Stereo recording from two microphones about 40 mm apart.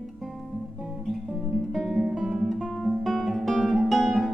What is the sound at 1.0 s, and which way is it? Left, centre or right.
Music, centre.